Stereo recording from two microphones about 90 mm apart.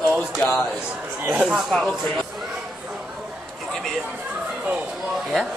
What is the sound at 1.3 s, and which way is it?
Speech, 15° right (ahead or behind).